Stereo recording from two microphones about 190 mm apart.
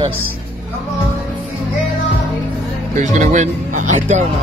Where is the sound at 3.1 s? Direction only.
40° right (ahead or behind).